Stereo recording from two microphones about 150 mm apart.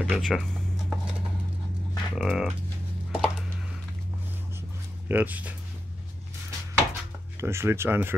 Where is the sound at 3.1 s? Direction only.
5° right (ahead or behind).